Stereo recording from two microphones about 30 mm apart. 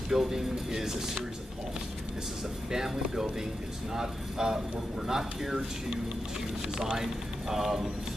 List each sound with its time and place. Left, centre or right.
0.1 s speech: centre
2.7 s speech: centre
6.9 s speech: centre